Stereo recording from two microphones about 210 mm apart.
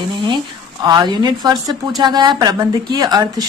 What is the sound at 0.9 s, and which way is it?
A woman's voice, 20° right (ahead or behind).